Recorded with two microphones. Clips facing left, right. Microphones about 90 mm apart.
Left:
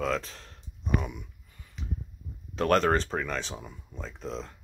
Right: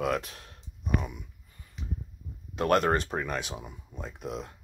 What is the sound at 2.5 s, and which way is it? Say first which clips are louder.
Speech: left 1 dB; 10° right (ahead or behind).